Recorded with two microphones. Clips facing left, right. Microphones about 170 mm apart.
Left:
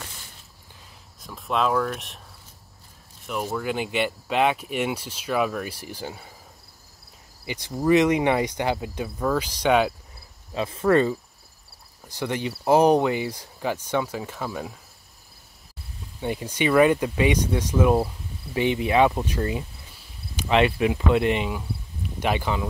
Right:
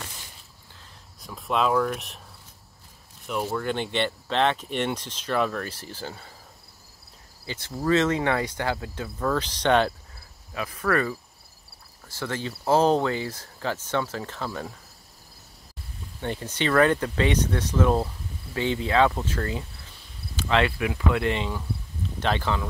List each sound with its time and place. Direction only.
1.2 s speech: centre (ahead or behind)
3.5 s speech: 5° left (ahead or behind)
7.4 s speech: 15° left (ahead or behind)
10.5 s cricket: 25° left (ahead or behind)
12.0 s speech: 15° left (ahead or behind)
16.2 s speech: 10° left (ahead or behind)
20.3 s cricket: 20° left (ahead or behind)
22.2 s speech: 15° left (ahead or behind)